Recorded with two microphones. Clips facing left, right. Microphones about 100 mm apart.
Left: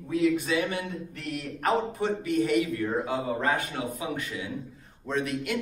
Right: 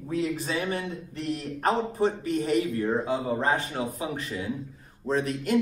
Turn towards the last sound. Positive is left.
turn(degrees=-35)  # may be behind; listen again after turning